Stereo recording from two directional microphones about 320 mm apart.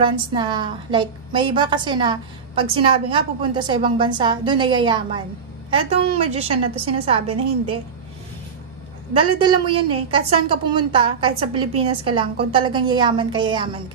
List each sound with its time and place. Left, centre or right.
0.0 s a woman's voice: centre
9.1 s a woman's voice: centre